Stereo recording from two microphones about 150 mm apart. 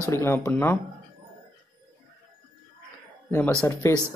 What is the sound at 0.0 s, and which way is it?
Speech, 15° left (ahead or behind).